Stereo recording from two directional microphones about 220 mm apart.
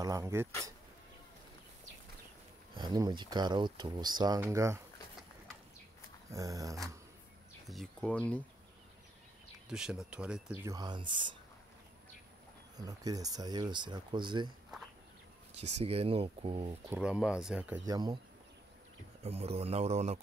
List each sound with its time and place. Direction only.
0.0 s speech: 15° right (ahead or behind)
2.7 s speech: 20° right (ahead or behind)
6.3 s speech: 15° right (ahead or behind)
7.6 s speech: centre (ahead or behind)
9.7 s speech: 5° right (ahead or behind); by 11.3 s 20° right (ahead or behind)
12.7 s speech: 15° right (ahead or behind)
15.8 s speech: 25° right (ahead or behind)
16.9 s speech: 5° right (ahead or behind)
17.8 s speech: 20° right (ahead or behind)
19.2 s speech: 30° right (ahead or behind)